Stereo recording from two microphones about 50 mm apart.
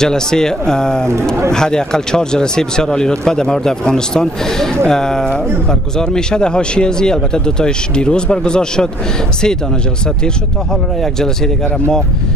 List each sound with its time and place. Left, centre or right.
0.0 s speech: centre
11.0 s speech: centre